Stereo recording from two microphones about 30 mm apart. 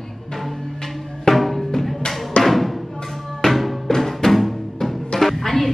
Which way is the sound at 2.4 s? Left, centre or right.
Centre.